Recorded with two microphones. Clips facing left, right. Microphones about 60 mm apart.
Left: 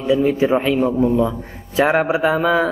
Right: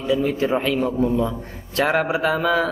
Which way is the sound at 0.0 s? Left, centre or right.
Centre.